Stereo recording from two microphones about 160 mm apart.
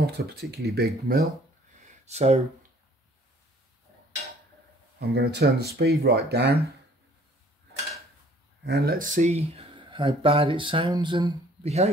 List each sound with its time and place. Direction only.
0.0 s speech: 85° right
0.7 s speech: 75° right (ahead or behind)
2.0 s speech: 40° right (ahead or behind)
4.9 s speech: 85° right
8.6 s speech: 80° right; by 11.7 s 30° right (ahead or behind)